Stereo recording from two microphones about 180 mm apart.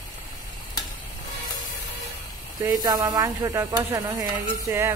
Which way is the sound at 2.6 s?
20° right (ahead or behind).